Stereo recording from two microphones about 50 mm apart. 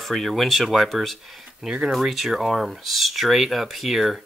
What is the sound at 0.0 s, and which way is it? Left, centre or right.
Speech, centre.